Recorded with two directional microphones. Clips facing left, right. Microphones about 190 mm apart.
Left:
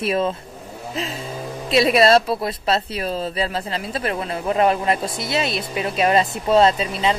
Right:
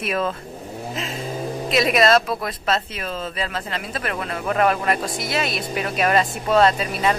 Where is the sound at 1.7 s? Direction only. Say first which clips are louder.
Left 3 dB; 30° left (ahead or behind).